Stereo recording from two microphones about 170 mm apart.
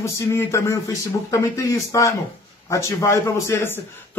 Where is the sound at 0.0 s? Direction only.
15° left (ahead or behind).